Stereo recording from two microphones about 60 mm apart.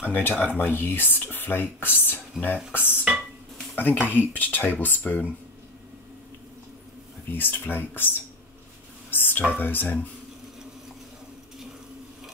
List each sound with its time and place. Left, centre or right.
0.0 s speech: left
7.2 s speech: left
9.1 s speech: left